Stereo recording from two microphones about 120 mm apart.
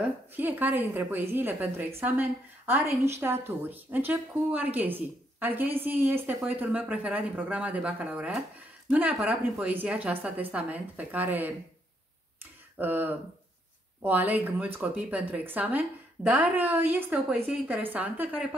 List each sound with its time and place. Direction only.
0.4 s a woman's voice: 15° right (ahead or behind)
12.7 s a woman's voice: 15° right (ahead or behind)